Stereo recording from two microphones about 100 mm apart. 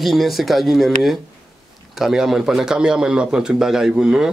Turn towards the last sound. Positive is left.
turn(degrees=-5)  # may be behind; listen again after turning